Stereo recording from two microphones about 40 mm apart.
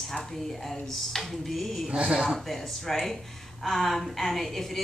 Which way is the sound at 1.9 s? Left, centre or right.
Centre.